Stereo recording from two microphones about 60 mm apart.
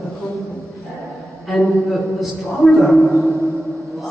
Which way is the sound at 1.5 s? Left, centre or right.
Centre.